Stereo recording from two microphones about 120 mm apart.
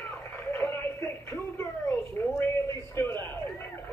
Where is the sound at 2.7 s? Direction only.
20° left (ahead or behind).